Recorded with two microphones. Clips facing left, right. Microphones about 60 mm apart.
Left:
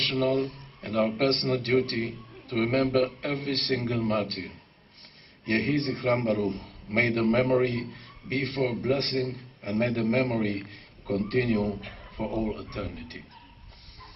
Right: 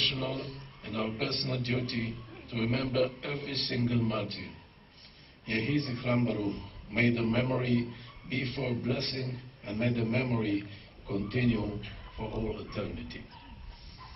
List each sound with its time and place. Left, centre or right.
0.0 s a man's voice: left
5.5 s a man's voice: left
11.4 s a man's voice: left